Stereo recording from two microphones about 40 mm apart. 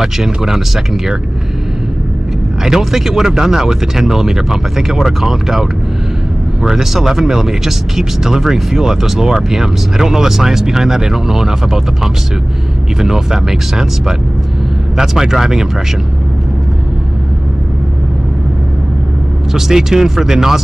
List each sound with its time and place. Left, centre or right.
0.0 s speech: centre
2.6 s speech: centre
19.5 s speech: centre